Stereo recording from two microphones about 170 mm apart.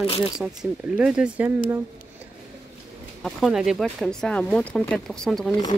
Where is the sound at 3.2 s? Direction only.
Centre (ahead or behind).